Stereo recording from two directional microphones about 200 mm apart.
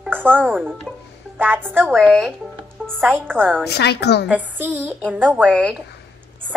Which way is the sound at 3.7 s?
55° left (ahead or behind).